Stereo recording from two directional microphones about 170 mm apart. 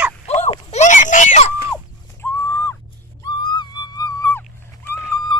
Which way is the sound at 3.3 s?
25° left (ahead or behind).